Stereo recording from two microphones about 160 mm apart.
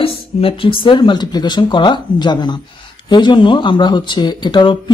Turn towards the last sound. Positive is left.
turn(degrees=30)  # may be behind; listen again after turning